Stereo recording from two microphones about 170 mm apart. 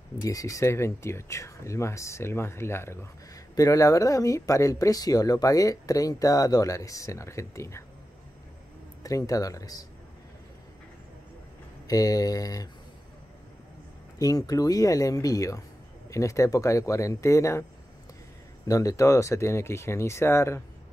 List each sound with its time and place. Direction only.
0.2 s speech: 20° left (ahead or behind)
9.0 s speech: 20° left (ahead or behind)
11.9 s speech: 20° left (ahead or behind)
14.1 s speech: 20° left (ahead or behind)
18.7 s speech: 20° left (ahead or behind)